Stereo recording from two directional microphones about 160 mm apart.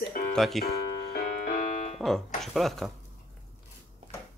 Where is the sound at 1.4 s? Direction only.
50° left (ahead or behind).